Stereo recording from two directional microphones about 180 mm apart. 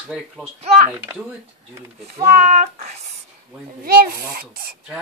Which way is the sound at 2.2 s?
40° right (ahead or behind).